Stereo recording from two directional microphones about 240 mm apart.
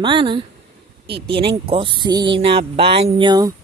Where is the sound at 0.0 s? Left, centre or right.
Centre.